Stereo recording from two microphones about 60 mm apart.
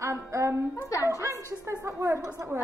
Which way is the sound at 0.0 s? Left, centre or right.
Right.